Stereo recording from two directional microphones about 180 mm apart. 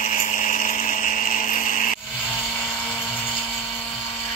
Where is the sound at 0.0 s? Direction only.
45° left (ahead or behind).